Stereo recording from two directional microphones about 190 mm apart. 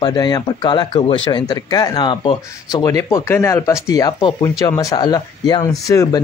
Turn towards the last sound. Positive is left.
turn(degrees=15)  # may be behind; listen again after turning